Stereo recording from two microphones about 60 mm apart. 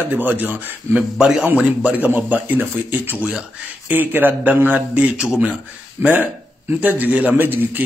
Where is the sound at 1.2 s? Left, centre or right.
Centre.